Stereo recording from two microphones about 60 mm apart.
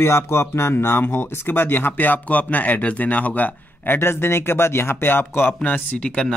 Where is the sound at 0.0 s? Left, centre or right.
Left.